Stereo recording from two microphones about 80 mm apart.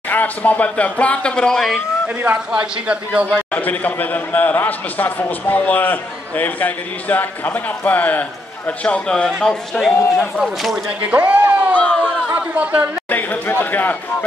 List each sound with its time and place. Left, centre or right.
0.1 s speech: left; by 1.8 s centre
2.2 s a man's voice: centre
3.5 s a man's voice: left
10.1 s speech: centre
10.9 s a man's voice: centre
11.7 s a sound: centre
12.3 s a sound: centre
13.1 s a man's voice: left